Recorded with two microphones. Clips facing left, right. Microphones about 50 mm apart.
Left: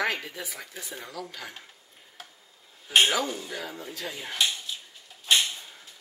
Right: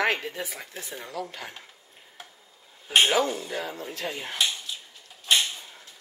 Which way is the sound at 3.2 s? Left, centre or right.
Centre.